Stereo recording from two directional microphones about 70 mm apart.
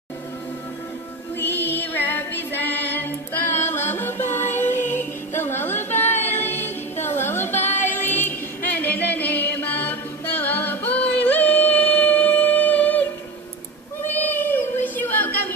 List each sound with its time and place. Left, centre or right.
1.4 s female singing: left
14.0 s child singing: left